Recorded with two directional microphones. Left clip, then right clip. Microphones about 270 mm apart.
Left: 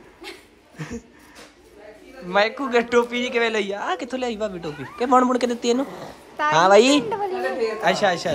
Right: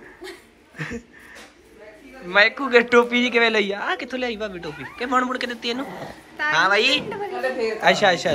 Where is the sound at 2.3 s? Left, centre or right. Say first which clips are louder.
Right 3 dB; centre.